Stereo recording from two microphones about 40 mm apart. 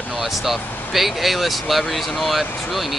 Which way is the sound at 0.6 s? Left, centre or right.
Left.